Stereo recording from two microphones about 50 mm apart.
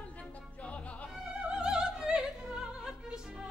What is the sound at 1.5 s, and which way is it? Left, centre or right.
Music, centre.